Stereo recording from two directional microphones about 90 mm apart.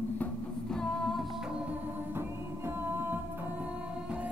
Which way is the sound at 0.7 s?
5° left (ahead or behind).